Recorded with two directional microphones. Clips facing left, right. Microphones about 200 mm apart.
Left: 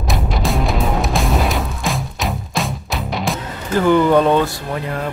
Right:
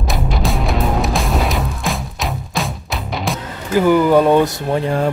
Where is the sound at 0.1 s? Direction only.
Centre (ahead or behind).